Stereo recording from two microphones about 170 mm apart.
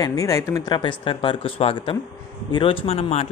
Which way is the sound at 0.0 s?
20° left (ahead or behind).